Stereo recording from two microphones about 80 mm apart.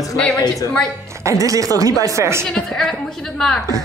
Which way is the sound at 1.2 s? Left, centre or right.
Right.